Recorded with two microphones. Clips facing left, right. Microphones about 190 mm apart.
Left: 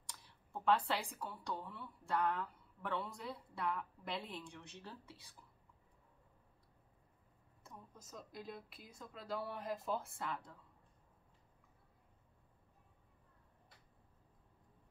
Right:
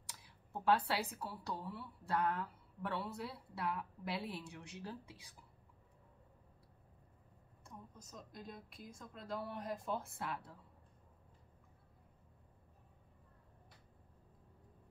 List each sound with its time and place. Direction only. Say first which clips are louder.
0.1 s speech: right 1 dB; 5° right (ahead or behind)
7.6 s speech: right 2 dB; 5° left (ahead or behind)